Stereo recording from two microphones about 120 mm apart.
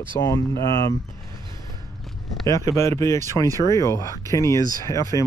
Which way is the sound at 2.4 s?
25° left (ahead or behind).